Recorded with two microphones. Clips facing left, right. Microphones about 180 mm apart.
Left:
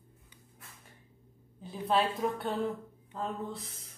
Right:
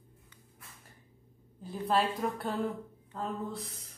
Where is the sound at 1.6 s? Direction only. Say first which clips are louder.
Even; centre (ahead or behind).